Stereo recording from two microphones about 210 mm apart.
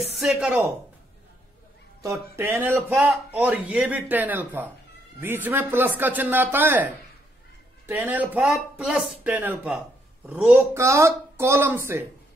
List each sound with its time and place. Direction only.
0.2 s speech: 5° right (ahead or behind)
2.0 s a man's voice: 10° right (ahead or behind)